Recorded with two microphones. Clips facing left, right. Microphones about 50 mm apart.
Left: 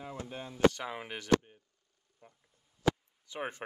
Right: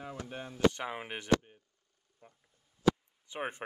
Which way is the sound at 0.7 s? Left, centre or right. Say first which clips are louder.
Right 1 dB; right.